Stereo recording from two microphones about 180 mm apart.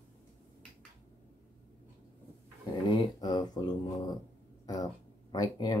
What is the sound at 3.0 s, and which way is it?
Speech, 20° left (ahead or behind).